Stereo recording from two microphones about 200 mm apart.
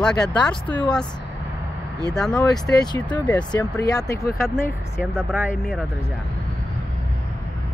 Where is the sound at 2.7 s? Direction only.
20° left (ahead or behind).